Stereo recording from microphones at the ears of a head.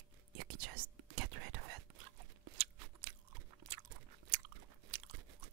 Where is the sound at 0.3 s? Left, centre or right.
Right.